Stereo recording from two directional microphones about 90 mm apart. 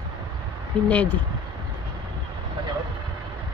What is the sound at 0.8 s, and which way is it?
Speech, 15° left (ahead or behind).